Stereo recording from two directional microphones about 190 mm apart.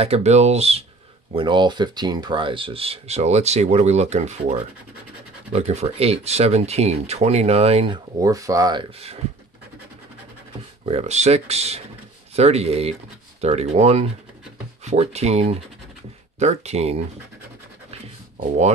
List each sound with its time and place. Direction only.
0.0 s speech: 35° right (ahead or behind)
10.9 s speech: 35° right (ahead or behind)